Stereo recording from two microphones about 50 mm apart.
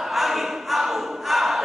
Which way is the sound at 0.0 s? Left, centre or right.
Centre.